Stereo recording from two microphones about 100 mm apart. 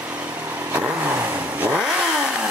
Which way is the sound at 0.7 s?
15° right (ahead or behind).